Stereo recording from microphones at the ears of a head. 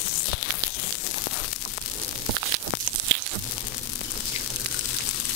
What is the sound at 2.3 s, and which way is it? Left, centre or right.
Tearing, right.